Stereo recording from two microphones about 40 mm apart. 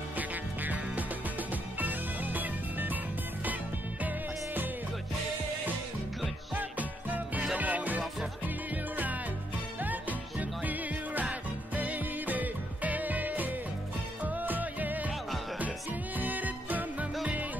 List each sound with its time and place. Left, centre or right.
0.2 s music: right
6.5 s music: right